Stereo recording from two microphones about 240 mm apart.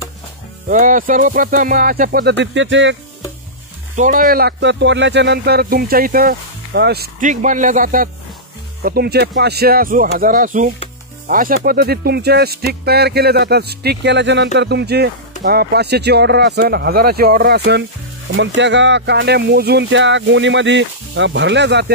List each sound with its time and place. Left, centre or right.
0.7 s speech: right
3.9 s speech: right